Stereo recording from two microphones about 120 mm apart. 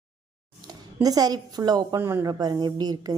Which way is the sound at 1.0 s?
30° right (ahead or behind).